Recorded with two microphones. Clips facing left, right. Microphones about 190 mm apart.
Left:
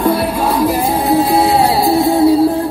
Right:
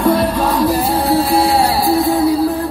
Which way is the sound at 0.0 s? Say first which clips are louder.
Even; 10° left (ahead or behind).